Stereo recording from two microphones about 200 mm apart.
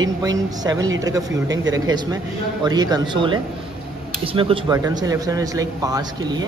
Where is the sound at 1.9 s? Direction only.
20° right (ahead or behind).